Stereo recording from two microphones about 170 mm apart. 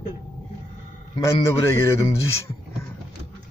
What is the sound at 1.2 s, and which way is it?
Music, 20° left (ahead or behind).